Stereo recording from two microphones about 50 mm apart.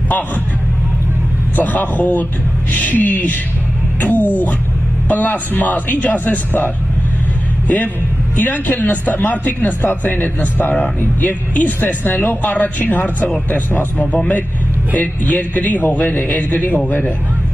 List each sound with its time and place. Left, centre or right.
1.6 s a man's voice: left